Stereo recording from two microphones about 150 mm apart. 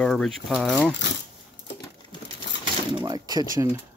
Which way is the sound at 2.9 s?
30° right (ahead or behind).